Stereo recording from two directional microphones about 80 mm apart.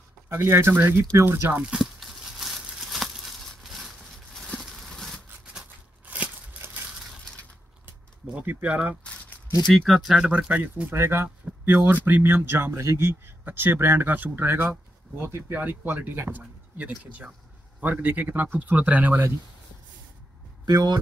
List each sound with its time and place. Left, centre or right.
0.3 s speech: right
1.5 s speech: centre
1.8 s crumpling: centre
2.8 s a sound: centre
6.0 s a sound: centre
6.6 s crushing: right
8.4 s speech: right
9.7 s speech: centre
9.9 s speech: centre
10.5 s speech: right
13.4 s speech: right
14.7 s speech: right
15.5 s speech: right
20.6 s speech: right